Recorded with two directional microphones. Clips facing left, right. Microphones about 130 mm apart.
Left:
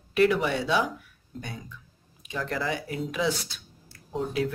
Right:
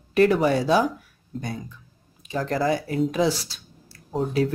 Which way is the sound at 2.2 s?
40° right (ahead or behind).